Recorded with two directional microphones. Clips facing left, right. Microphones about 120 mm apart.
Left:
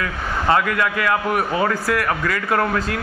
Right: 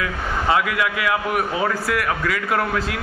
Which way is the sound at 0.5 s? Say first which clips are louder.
Left 2 dB; 5° right (ahead or behind).